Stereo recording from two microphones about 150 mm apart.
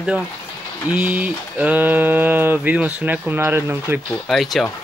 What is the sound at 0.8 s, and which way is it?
Speech, 10° right (ahead or behind).